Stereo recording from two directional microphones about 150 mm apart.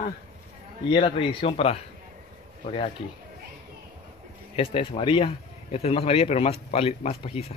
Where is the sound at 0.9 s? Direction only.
35° left (ahead or behind).